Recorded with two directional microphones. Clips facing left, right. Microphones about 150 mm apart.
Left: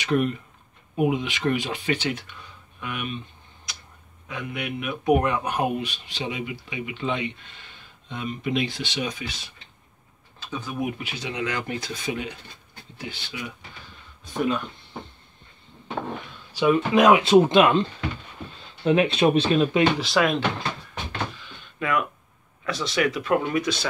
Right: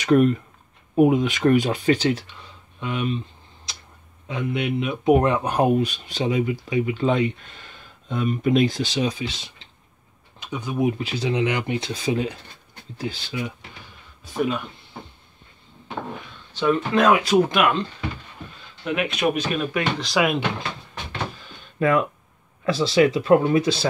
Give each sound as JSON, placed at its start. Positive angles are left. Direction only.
{"t": 0.0, "sound": "speech", "side_deg": -45}
{"t": 4.3, "sound": "speech", "side_deg": -25}
{"t": 10.4, "sound": "speech", "side_deg": -20}
{"t": 11.9, "sound": "speech", "side_deg": -30}
{"t": 14.2, "sound": "speech", "side_deg": -5}
{"t": 16.5, "sound": "speech", "side_deg": 10}
{"t": 17.2, "sound": "speech", "side_deg": 25}
{"t": 18.9, "sound": "speech", "side_deg": 30}
{"t": 20.0, "sound": "speech", "side_deg": 0}
{"t": 21.4, "sound": "door", "side_deg": -35}
{"t": 22.7, "sound": "speech", "side_deg": -30}